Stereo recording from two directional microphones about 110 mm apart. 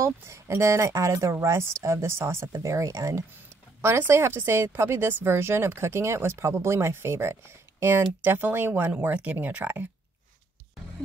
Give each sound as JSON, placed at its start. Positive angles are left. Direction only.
{"t": 0.0, "sound": "speech", "side_deg": -25}